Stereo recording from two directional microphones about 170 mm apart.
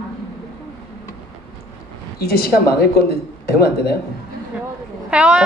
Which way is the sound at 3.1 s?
70° left (ahead or behind).